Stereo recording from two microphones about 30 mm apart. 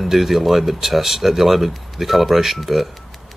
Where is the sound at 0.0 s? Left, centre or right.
Centre.